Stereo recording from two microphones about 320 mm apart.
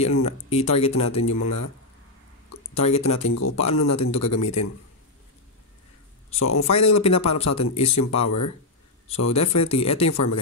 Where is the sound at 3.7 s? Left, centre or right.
Left.